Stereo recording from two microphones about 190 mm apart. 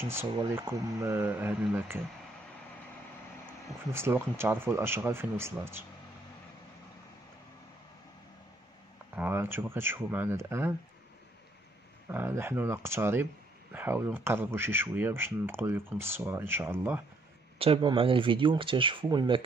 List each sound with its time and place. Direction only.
0.5 s speech: 15° right (ahead or behind)
3.9 s speech: 15° right (ahead or behind)
9.1 s speech: 10° right (ahead or behind)
12.1 s speech: 15° right (ahead or behind)
17.6 s speech: 30° right (ahead or behind)